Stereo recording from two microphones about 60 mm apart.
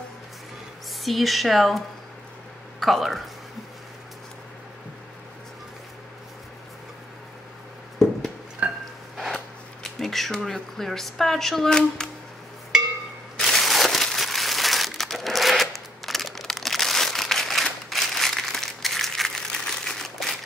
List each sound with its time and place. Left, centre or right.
1.0 s speech: centre
2.8 s speech: centre
8.6 s a sound: right
9.1 s a sound: centre
9.9 s speech: centre
13.4 s crumpling: centre